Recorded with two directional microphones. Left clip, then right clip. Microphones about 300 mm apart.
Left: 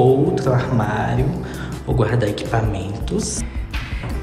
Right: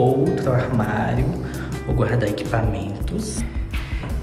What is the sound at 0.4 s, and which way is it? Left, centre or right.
Speech, centre.